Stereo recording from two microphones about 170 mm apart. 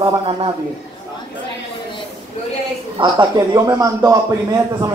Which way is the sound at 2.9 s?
25° right (ahead or behind).